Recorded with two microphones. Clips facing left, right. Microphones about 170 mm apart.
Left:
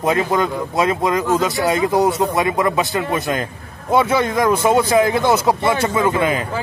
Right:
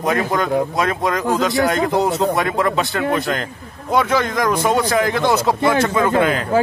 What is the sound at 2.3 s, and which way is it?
Speech, 15° left (ahead or behind).